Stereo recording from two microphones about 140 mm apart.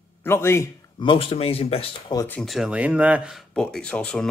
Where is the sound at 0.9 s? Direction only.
40° left (ahead or behind).